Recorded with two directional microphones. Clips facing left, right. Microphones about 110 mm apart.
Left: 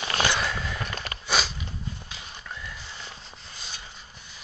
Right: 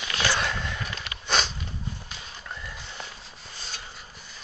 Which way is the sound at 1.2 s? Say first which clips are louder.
Right 1 dB; 5° left (ahead or behind).